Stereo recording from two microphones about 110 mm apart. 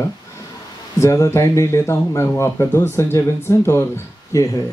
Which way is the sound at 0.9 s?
30° left (ahead or behind).